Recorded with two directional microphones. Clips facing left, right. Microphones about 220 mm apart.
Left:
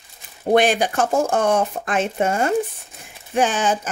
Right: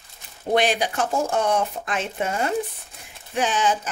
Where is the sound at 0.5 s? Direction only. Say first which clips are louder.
Left 4 dB; 50° left (ahead or behind).